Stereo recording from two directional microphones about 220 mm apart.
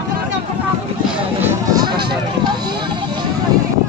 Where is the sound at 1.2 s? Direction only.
15° right (ahead or behind).